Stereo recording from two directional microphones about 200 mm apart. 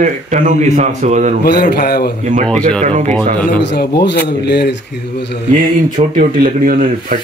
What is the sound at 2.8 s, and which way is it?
Speech, 35° right (ahead or behind).